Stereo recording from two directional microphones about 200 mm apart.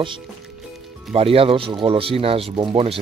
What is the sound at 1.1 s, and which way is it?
A man's voice, 30° right (ahead or behind).